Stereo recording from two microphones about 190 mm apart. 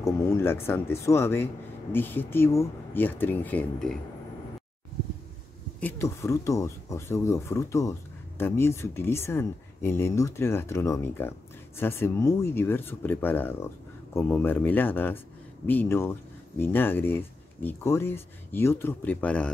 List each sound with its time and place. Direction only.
0.0 s speech: 15° left (ahead or behind)
5.8 s speech: 10° left (ahead or behind)